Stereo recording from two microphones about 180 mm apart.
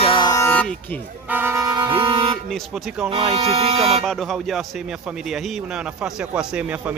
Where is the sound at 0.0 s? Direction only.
25° left (ahead or behind); by 1.0 s 10° left (ahead or behind).